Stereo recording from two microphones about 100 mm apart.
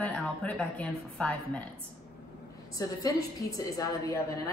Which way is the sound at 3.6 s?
35° left (ahead or behind).